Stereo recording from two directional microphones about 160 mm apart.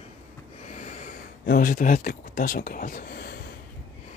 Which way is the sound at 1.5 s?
60° left (ahead or behind).